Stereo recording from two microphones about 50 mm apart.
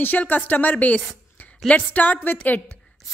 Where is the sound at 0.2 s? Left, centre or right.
Left.